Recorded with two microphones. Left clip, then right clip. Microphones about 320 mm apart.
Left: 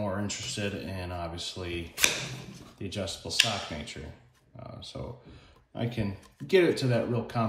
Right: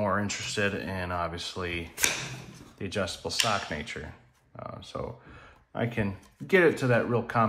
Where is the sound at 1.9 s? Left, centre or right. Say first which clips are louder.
Left 3 dB; centre.